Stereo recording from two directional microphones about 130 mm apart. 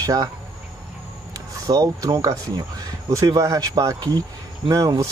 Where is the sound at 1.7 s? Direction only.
25° right (ahead or behind).